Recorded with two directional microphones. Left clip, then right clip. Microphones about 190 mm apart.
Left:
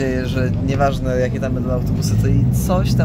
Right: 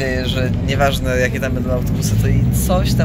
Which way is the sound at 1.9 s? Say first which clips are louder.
Even; 35° left (ahead or behind).